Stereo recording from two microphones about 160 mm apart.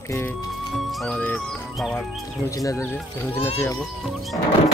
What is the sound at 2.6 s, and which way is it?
Speech, 15° left (ahead or behind).